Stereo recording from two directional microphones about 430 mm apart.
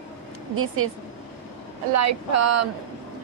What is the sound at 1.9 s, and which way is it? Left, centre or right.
Speech, right.